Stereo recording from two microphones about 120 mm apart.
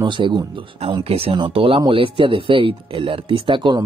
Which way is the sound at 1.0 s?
55° right (ahead or behind).